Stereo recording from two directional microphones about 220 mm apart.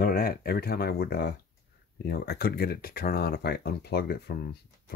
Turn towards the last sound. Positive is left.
turn(degrees=45)  # may be behind; listen again after turning